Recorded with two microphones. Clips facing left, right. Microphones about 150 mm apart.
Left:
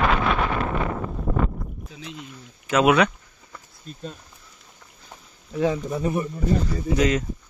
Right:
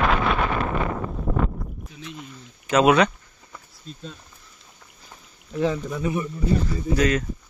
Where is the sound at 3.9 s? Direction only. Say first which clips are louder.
Even; 50° left (ahead or behind).